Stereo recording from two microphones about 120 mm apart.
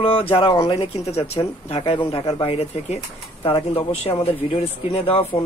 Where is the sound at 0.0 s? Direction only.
55° left (ahead or behind).